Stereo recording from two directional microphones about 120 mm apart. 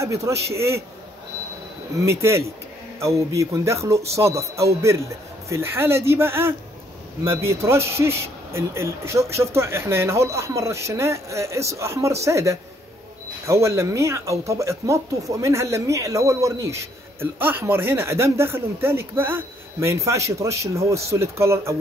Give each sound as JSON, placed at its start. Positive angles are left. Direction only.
{"t": 0.0, "sound": "speech", "side_deg": -25}
{"t": 2.0, "sound": "speech", "side_deg": -20}